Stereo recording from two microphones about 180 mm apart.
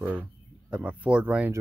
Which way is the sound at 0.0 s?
10° right (ahead or behind).